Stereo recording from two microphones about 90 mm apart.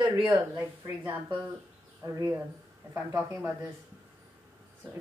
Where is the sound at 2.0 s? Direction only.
40° right (ahead or behind).